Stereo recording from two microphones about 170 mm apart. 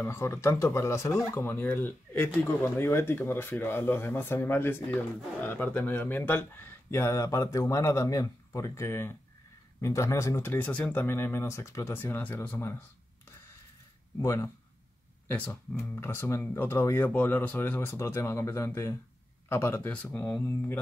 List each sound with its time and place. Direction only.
0.0 s speech: 15° left (ahead or behind)
14.2 s speech: 15° left (ahead or behind)